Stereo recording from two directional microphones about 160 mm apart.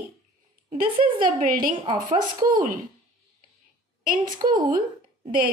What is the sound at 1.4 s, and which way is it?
Speech, 65° right (ahead or behind).